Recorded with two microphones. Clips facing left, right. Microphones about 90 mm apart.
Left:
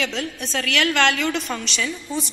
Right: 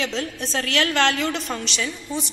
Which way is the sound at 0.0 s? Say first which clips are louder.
Even; 30° right (ahead or behind).